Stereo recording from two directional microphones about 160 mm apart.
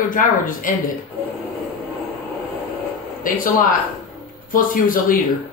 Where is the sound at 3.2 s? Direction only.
60° left (ahead or behind).